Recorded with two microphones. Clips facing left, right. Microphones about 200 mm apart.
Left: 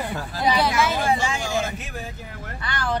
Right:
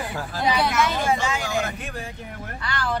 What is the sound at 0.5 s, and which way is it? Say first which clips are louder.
Speech: even; centre (ahead or behind).